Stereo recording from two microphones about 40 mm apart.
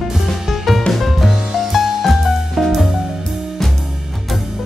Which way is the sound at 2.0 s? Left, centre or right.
Centre.